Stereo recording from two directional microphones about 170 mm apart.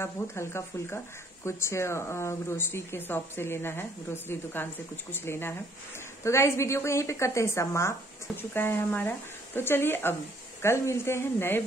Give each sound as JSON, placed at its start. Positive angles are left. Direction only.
{"t": 0.0, "sound": "speech", "side_deg": 15}